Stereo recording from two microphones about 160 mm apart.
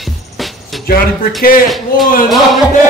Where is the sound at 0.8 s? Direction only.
70° left (ahead or behind).